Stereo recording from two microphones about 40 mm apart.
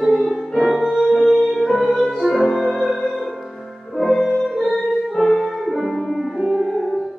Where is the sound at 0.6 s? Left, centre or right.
Centre.